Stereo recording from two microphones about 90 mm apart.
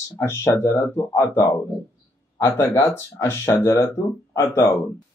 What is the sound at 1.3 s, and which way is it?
Speech, 40° left (ahead or behind).